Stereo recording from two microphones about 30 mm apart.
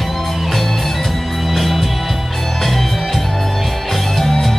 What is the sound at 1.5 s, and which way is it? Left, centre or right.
Music, centre.